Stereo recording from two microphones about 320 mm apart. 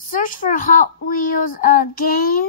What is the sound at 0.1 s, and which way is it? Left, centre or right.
A woman's voice, left.